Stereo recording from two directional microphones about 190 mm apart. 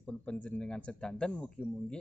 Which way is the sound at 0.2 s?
5° left (ahead or behind).